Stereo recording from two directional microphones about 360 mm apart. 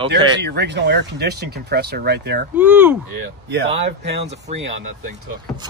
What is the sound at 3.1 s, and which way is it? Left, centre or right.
Speech, right.